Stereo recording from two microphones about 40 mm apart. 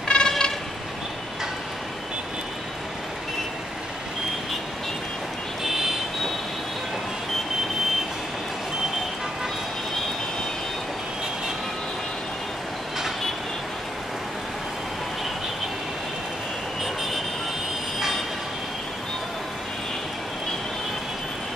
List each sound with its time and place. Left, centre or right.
0.1 s vehicle: centre
5.6 s vehicle: centre